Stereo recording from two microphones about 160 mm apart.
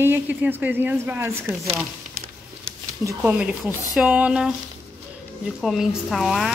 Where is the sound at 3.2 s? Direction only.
10° right (ahead or behind).